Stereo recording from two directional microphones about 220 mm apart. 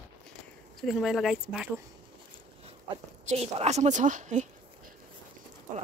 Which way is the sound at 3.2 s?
30° right (ahead or behind).